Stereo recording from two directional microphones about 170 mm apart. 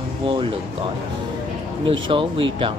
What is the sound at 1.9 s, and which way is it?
Speech, 30° right (ahead or behind).